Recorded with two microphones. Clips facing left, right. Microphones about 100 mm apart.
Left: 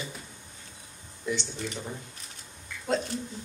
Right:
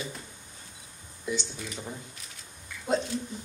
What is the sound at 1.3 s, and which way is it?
Speech, 20° right (ahead or behind).